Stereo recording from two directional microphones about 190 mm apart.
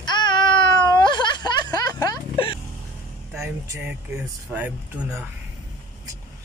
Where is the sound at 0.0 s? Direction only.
25° left (ahead or behind).